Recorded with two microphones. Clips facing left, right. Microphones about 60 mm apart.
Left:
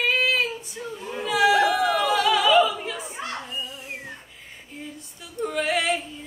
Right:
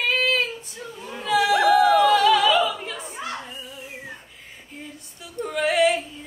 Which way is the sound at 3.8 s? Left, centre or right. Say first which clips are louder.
Left 1 dB; left.